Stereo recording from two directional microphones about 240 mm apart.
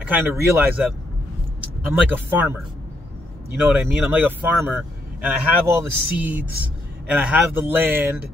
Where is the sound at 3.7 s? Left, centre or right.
Centre.